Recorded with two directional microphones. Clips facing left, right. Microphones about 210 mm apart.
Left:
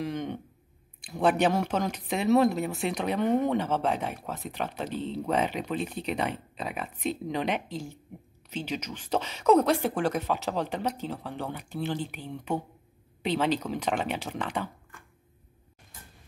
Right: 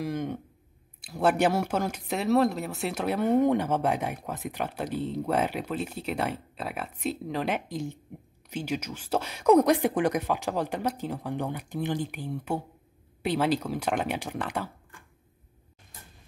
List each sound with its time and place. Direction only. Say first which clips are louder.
0.0 s speech: right 1 dB; 10° right (ahead or behind)
7.6 s speech: right 3 dB; 15° right (ahead or behind)